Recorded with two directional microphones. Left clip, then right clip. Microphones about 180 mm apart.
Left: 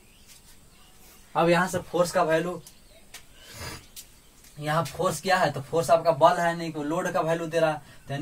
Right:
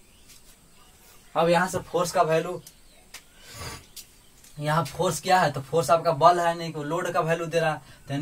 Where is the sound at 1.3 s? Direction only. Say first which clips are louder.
Right 1 dB; 30° left (ahead or behind).